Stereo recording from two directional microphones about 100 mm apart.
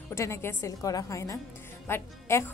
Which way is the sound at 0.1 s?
25° left (ahead or behind).